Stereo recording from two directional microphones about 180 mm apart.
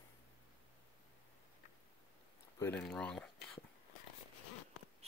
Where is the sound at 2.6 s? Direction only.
5° left (ahead or behind).